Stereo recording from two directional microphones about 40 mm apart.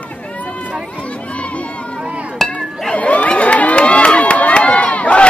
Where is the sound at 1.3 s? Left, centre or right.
Left.